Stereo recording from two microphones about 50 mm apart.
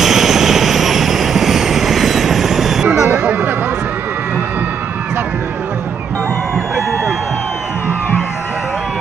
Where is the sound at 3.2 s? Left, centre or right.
Right.